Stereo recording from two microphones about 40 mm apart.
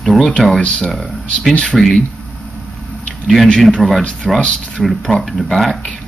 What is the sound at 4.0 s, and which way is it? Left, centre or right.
Speech, left.